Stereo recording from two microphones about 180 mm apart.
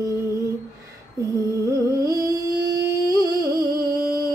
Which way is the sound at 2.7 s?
20° right (ahead or behind).